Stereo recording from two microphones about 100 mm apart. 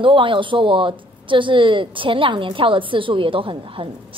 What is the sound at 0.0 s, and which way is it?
A woman's voice, 60° right (ahead or behind).